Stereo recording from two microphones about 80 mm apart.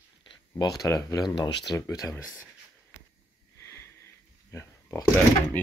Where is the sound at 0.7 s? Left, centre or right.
Left.